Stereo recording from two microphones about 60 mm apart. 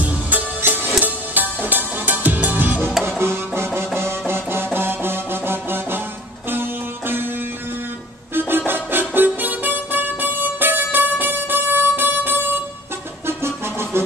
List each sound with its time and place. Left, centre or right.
0.6 s music: right
8.4 s music: right